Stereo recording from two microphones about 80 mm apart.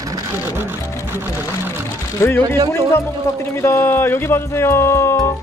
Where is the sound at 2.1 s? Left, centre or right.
Left.